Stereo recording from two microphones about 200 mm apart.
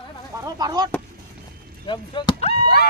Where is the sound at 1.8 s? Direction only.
25° left (ahead or behind).